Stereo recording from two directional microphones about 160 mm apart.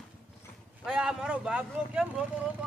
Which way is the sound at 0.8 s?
5° right (ahead or behind).